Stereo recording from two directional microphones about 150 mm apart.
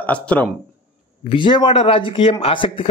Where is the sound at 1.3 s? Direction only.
35° left (ahead or behind).